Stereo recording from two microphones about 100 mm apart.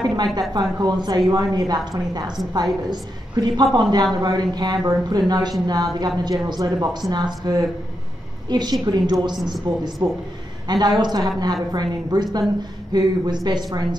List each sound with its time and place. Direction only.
0.0 s a woman's voice: 45° right (ahead or behind)